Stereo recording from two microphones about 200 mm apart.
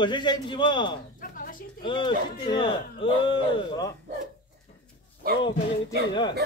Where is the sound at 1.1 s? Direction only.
45° left (ahead or behind).